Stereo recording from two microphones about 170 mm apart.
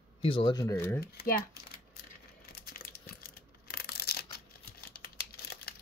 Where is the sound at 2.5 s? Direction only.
60° left (ahead or behind).